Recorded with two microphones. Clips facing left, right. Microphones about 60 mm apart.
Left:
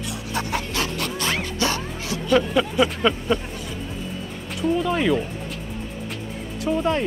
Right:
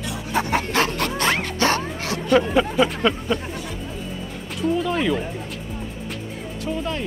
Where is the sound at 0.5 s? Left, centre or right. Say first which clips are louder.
Right 6 dB; right.